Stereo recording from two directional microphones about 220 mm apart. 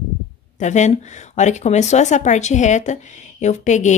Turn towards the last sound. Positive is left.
turn(degrees=35)  # may be behind; listen again after turning